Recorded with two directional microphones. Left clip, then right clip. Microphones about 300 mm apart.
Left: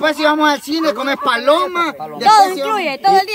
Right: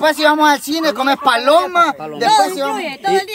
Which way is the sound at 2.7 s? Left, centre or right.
Centre.